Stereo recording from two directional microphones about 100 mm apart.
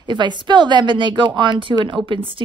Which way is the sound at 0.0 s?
50° right (ahead or behind).